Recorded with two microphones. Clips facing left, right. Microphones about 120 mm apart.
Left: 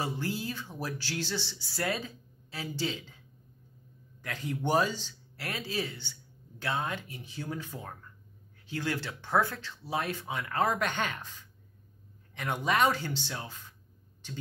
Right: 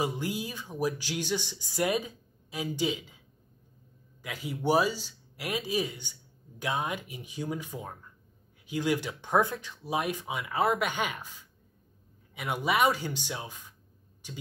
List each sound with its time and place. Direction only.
0.0 s speech: 15° right (ahead or behind)
4.2 s speech: 10° right (ahead or behind)